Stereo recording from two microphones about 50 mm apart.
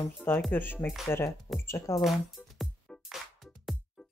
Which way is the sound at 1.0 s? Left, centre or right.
Left.